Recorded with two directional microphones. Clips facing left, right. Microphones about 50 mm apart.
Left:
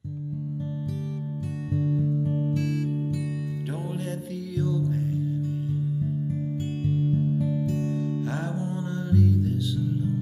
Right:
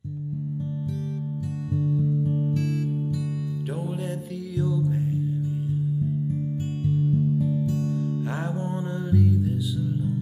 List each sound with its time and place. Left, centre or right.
1.8 s music: left
3.6 s music: centre
7.1 s music: left
7.7 s music: left
8.3 s music: right
8.9 s music: centre